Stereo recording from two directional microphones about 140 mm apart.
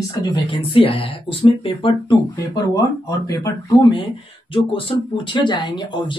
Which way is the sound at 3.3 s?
25° left (ahead or behind).